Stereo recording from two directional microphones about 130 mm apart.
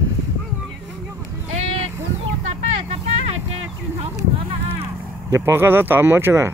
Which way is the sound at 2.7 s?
55° right (ahead or behind).